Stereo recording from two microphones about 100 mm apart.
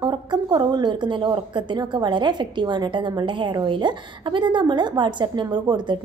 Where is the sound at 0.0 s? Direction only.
50° right (ahead or behind).